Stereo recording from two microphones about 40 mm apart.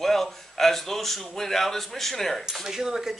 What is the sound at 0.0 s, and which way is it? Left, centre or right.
A man's voice, centre.